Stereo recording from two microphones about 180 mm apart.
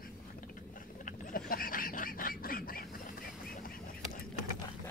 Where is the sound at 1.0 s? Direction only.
50° left (ahead or behind).